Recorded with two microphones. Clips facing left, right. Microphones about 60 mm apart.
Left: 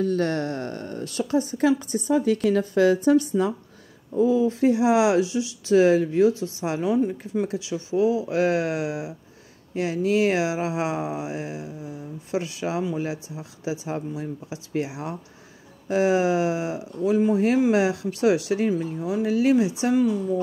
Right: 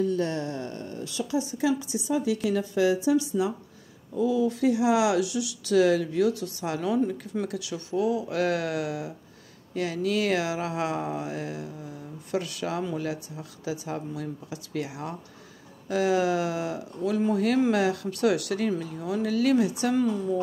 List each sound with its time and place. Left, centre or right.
0.0 s a woman's voice: left
4.1 s speech: left; by 20.2 s centre